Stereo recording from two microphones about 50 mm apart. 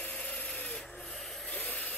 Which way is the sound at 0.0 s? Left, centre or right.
Left.